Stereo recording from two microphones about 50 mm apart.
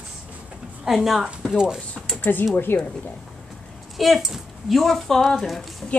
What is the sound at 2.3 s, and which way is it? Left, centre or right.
Speech, left.